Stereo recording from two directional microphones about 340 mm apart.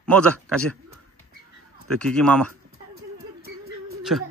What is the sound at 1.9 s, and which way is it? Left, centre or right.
Speech, centre.